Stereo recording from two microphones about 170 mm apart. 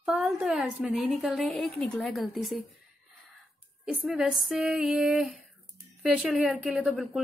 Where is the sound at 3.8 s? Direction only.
5° right (ahead or behind).